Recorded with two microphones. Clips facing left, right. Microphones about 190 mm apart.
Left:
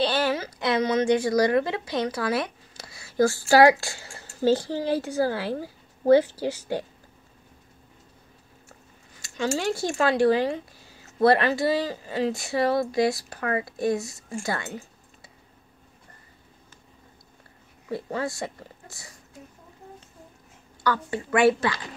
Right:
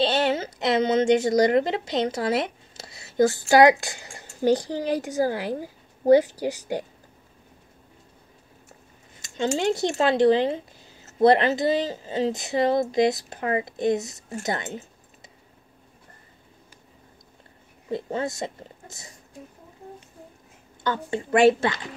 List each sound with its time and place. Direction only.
0.0 s a woman's voice: 25° right (ahead or behind)
9.6 s speech: 25° right (ahead or behind)
17.8 s speech: 20° right (ahead or behind)
20.8 s speech: 25° right (ahead or behind)